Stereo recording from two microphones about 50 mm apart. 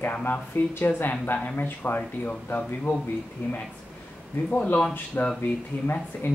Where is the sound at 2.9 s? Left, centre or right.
Left.